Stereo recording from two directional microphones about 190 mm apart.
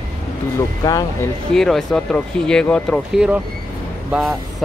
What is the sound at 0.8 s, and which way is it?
Speech, 20° left (ahead or behind).